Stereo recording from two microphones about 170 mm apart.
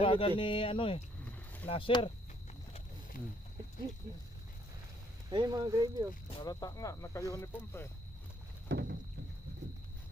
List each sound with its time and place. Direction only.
0.0 s speech: 30° left (ahead or behind)
3.1 s speech: 55° left (ahead or behind)
5.3 s speech: 25° right (ahead or behind)
6.3 s speech: 25° left (ahead or behind)
8.6 s vehicle: 90° right